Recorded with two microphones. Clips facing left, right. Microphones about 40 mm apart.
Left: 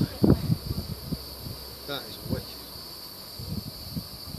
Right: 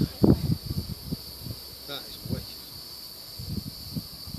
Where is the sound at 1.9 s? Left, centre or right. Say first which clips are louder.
Left 3 dB; centre.